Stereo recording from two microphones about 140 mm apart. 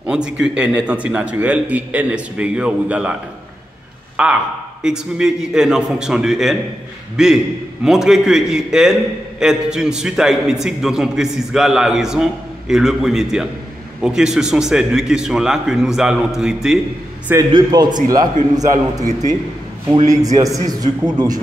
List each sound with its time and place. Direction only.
0.0 s a man's voice: 5° right (ahead or behind)
4.2 s a man's voice: 10° right (ahead or behind)
17.5 s a man's voice: 30° right (ahead or behind)
20.1 s a man's voice: 25° right (ahead or behind)